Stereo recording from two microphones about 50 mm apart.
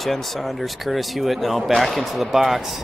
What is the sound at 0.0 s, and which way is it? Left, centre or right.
Speech, centre.